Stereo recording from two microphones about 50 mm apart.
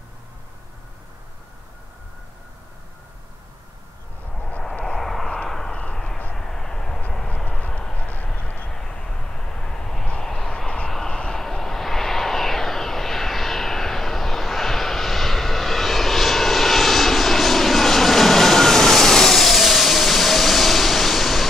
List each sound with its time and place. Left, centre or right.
4.7 s vehicle: centre; by 8.3 s left
8.5 s vehicle: centre